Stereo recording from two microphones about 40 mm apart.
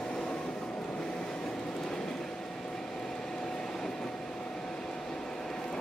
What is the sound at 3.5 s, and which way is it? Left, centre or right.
Train, centre.